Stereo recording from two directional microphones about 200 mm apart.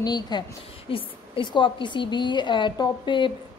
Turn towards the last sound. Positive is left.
turn(degrees=25)  # may be behind; listen again after turning